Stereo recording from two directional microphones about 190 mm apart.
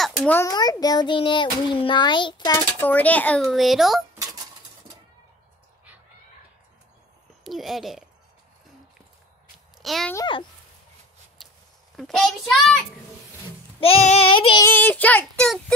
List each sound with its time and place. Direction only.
0.0 s a sound: 5° left (ahead or behind)
0.5 s a child's voice: 20° left (ahead or behind)
2.8 s speech: 10° left (ahead or behind)
4.1 s dishes: 20° right (ahead or behind)
7.4 s speech: centre (ahead or behind)
9.8 s a child's voice: centre (ahead or behind)
10.1 s a child's voice: 25° left (ahead or behind)
12.0 s speech: centre (ahead or behind)
13.7 s a child's voice: 30° left (ahead or behind)
14.6 s child singing: 10° left (ahead or behind)